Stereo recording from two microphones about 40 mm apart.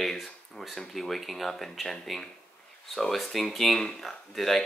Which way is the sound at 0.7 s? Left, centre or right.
Centre.